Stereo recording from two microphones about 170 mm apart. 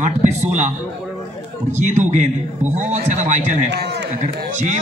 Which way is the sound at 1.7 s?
45° right (ahead or behind).